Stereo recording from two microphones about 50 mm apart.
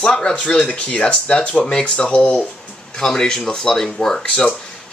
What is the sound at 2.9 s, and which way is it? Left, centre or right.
Speech, centre.